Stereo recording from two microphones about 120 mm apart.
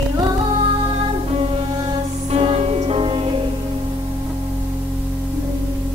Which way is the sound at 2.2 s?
55° right (ahead or behind).